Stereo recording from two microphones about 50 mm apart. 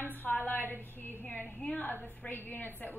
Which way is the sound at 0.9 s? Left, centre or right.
Left.